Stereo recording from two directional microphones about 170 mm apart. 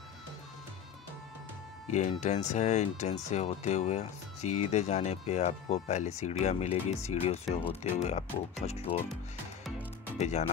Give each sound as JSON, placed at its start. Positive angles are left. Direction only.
{"t": 1.9, "sound": "speech", "side_deg": 45}
{"t": 10.1, "sound": "speech", "side_deg": 40}